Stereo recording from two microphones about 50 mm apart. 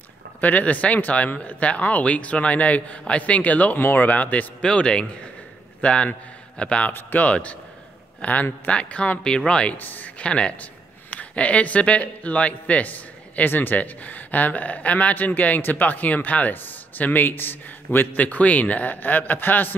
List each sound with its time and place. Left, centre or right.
0.4 s speech: left
4.6 s a man's voice: centre
6.9 s speech: left
7.2 s speech: left
9.8 s speech: left
10.2 s speech: left
13.4 s speech: left